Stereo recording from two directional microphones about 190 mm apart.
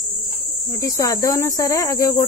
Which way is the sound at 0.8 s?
20° left (ahead or behind).